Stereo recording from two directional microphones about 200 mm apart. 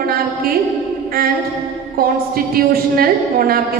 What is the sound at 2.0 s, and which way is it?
A woman's voice, 50° right (ahead or behind).